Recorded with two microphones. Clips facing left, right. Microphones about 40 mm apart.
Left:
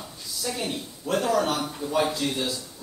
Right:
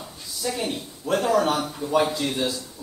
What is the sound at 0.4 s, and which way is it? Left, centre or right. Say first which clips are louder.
A man's voice: right 3 dB; centre.